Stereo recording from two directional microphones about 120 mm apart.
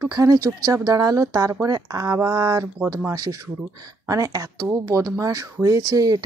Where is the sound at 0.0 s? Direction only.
25° right (ahead or behind).